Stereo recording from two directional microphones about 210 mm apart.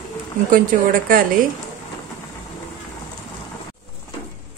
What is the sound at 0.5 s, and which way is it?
Speech, 40° right (ahead or behind).